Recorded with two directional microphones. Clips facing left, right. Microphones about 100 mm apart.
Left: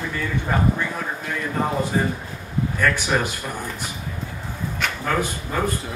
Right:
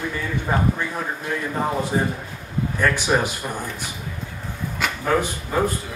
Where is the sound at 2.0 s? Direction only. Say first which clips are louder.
Even; 10° right (ahead or behind).